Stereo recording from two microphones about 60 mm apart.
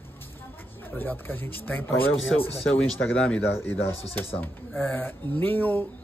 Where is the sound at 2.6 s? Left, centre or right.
Centre.